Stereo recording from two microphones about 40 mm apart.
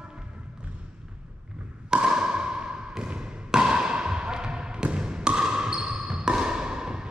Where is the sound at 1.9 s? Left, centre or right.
Centre.